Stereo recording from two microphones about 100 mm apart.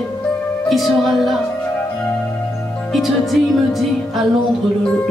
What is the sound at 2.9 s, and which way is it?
Speech, centre (ahead or behind).